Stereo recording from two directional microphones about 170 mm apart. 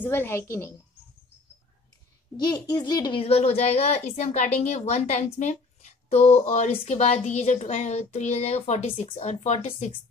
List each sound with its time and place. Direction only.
0.0 s a woman's voice: 15° left (ahead or behind)
2.3 s a child's voice: 25° left (ahead or behind); by 9.9 s 40° left (ahead or behind)